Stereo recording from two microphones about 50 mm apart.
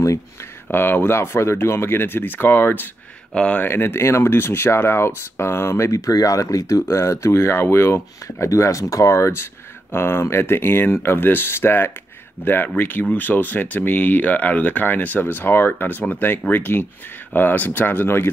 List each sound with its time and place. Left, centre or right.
0.7 s speech: left
1.4 s speech: left
3.3 s speech: left
3.6 s speech: left
8.4 s speech: left